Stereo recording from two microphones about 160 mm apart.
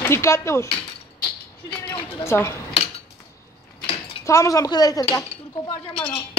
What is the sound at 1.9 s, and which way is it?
Speech, 15° left (ahead or behind).